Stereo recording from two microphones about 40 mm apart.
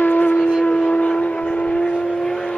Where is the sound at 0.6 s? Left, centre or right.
Left.